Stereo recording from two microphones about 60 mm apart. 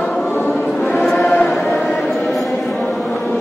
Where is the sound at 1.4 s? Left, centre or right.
Centre.